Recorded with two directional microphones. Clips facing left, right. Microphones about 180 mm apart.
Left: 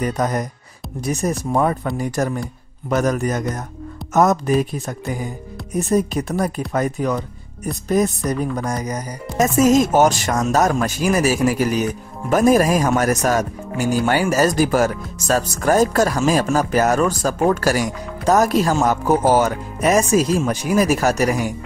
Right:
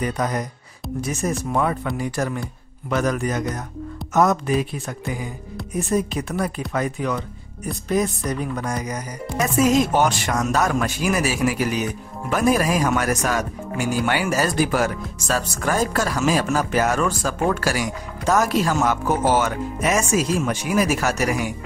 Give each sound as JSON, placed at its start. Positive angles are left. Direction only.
{"t": 0.0, "sound": "speech", "side_deg": 45}